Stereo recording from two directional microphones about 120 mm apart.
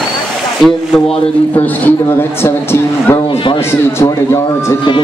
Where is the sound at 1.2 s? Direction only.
15° left (ahead or behind).